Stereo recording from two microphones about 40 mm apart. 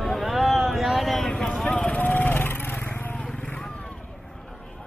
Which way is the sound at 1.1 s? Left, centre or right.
Centre.